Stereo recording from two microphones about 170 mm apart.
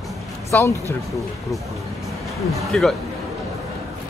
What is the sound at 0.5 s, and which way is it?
Speech, 15° left (ahead or behind).